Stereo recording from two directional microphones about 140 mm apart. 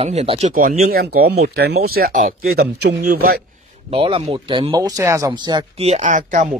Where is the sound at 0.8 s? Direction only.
90° right; by 2.6 s 65° right (ahead or behind).